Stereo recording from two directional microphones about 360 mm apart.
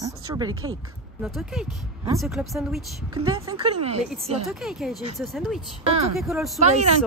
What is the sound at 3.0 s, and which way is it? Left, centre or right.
A woman's voice, centre.